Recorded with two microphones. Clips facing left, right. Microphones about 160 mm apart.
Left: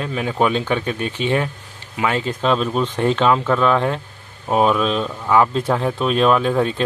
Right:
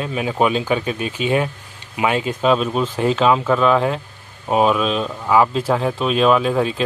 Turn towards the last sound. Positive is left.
turn(degrees=0)  # may be behind; listen again after turning